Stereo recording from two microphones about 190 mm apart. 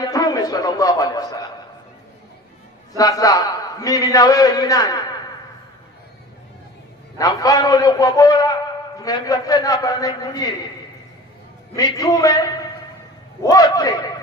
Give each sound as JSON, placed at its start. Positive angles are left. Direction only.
{"t": 0.0, "sound": "a man's voice", "side_deg": 20}
{"t": 3.0, "sound": "a man's voice", "side_deg": 20}
{"t": 7.2, "sound": "a man's voice", "side_deg": 20}
{"t": 11.7, "sound": "a man's voice", "side_deg": 20}